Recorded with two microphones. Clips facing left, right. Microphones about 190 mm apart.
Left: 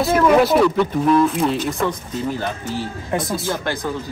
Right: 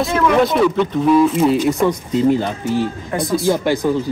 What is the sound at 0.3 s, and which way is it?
Speech, 5° left (ahead or behind).